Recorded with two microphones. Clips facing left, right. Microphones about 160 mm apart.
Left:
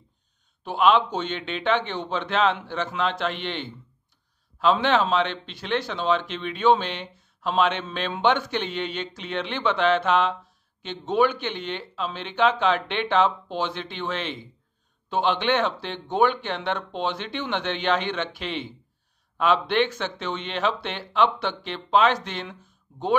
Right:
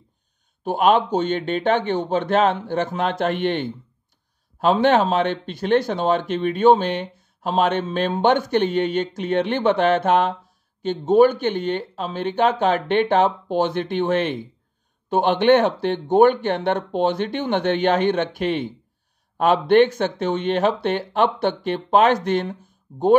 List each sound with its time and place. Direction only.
0.7 s speech: 45° right (ahead or behind)